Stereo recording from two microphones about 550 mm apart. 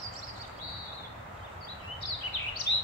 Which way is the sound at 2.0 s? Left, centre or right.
Left.